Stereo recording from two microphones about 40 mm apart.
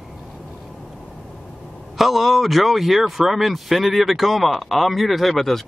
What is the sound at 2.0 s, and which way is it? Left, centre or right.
Speech, centre.